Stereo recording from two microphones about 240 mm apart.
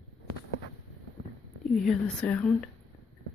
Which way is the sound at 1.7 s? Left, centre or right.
Centre.